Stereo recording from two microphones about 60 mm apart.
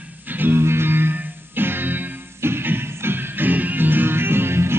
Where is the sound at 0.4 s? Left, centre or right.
Right.